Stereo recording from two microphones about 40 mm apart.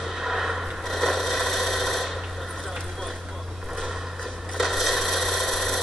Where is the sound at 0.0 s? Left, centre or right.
Centre.